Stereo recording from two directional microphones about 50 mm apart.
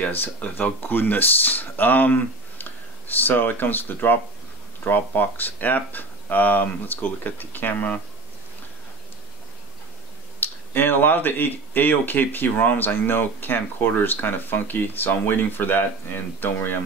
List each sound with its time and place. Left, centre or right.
0.4 s speech: left
10.4 s speech: left